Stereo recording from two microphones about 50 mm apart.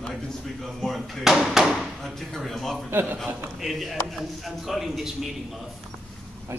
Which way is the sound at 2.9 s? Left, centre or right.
Right.